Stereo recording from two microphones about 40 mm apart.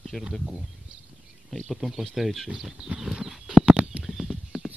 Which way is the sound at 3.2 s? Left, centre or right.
Centre.